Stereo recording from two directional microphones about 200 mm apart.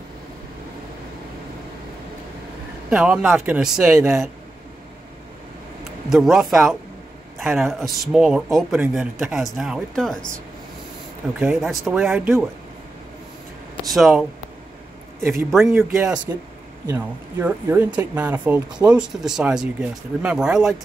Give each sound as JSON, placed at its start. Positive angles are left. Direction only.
{"t": 2.9, "sound": "speech", "side_deg": -5}
{"t": 6.0, "sound": "speech", "side_deg": 0}
{"t": 11.3, "sound": "speech", "side_deg": 0}
{"t": 13.8, "sound": "speech", "side_deg": 0}
{"t": 15.5, "sound": "speech", "side_deg": 0}
{"t": 15.9, "sound": "speech", "side_deg": -10}